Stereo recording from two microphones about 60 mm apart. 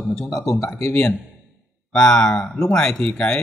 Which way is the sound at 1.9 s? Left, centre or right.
Centre.